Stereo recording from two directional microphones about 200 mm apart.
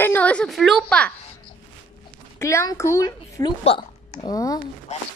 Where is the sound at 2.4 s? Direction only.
15° left (ahead or behind).